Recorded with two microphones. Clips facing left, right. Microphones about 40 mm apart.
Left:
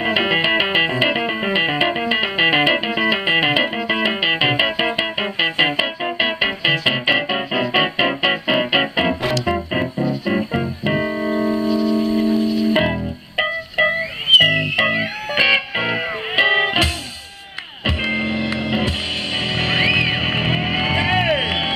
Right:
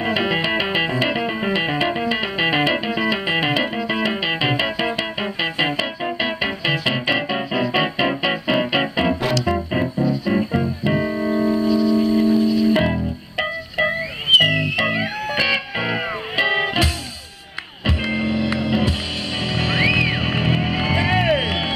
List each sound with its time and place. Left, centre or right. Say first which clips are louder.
0.0 s music: left 3 dB; left